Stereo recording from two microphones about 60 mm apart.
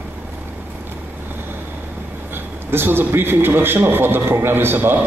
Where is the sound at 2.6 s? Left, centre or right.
Right.